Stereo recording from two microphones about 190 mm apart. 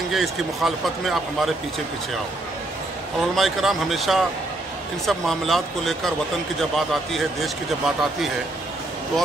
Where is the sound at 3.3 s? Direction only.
Centre (ahead or behind).